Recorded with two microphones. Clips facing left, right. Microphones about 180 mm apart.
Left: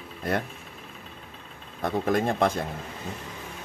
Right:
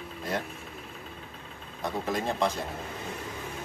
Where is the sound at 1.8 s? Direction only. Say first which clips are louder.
Left 5 dB; 55° left (ahead or behind).